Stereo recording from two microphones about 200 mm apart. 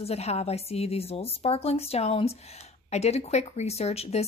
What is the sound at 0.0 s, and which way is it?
A woman's voice, 30° left (ahead or behind).